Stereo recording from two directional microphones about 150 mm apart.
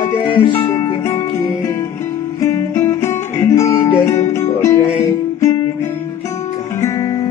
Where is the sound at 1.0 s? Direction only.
20° left (ahead or behind).